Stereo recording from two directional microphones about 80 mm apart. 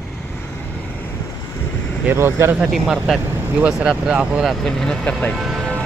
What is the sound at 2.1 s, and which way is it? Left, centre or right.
Speech, right.